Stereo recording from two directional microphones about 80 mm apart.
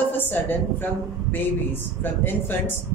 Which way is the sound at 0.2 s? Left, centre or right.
Left.